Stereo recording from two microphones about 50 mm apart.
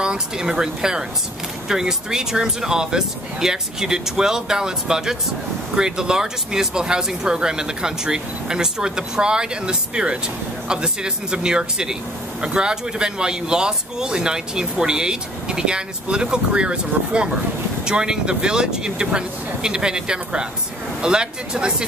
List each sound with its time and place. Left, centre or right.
0.0 s speech: centre